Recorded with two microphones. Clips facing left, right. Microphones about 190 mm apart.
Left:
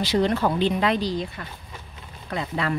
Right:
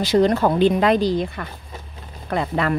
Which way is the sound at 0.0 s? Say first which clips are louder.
Right 5 dB; 45° right (ahead or behind).